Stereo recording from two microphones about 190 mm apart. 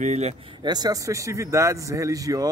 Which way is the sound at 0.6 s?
20° right (ahead or behind).